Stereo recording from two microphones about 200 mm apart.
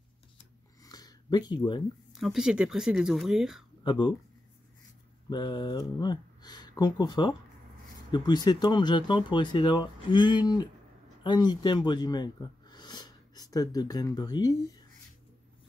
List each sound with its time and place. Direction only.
0.8 s a sound: 20° left (ahead or behind)
2.1 s speech: centre (ahead or behind)
3.8 s speech: 25° left (ahead or behind)
5.3 s speech: 20° left (ahead or behind)